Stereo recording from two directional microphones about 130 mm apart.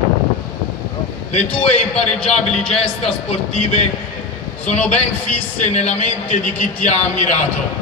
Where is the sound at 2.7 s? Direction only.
50° left (ahead or behind).